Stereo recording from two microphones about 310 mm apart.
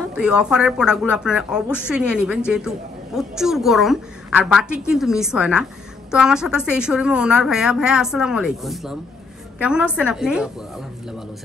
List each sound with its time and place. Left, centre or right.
0.1 s a woman's voice: centre